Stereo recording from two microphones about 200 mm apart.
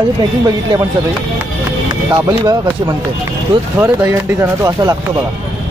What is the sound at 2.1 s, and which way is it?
Speech, 20° right (ahead or behind).